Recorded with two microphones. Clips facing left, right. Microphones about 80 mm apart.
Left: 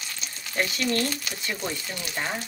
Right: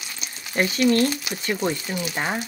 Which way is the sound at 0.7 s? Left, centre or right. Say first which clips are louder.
Right 7 dB; centre.